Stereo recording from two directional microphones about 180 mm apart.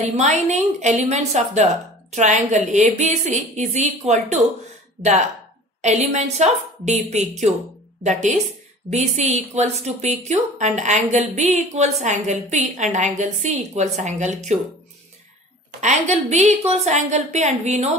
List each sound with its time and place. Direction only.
0.1 s a woman's voice: 40° right (ahead or behind)
5.8 s a woman's voice: 40° right (ahead or behind)
15.8 s a woman's voice: 40° right (ahead or behind)